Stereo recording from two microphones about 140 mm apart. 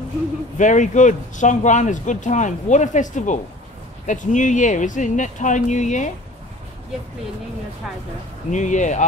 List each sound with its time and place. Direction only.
0.6 s speech: 60° left (ahead or behind)
8.5 s speech: 60° left (ahead or behind)